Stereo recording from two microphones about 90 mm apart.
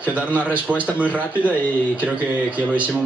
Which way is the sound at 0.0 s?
15° right (ahead or behind).